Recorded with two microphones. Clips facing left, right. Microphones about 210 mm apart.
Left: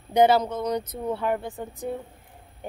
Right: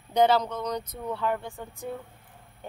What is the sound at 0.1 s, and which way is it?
Speech, 10° left (ahead or behind).